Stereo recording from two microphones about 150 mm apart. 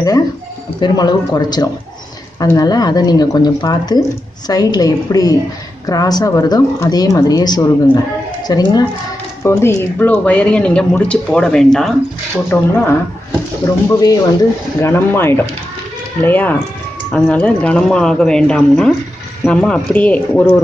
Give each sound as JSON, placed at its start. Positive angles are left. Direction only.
{"t": 0.7, "sound": "a woman's voice", "side_deg": 30}
{"t": 12.4, "sound": "a woman's voice", "side_deg": 15}